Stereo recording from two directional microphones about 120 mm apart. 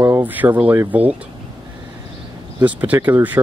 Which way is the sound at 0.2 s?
15° right (ahead or behind).